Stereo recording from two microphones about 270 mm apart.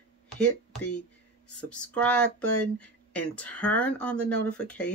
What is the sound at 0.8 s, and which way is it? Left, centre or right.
Speech, left.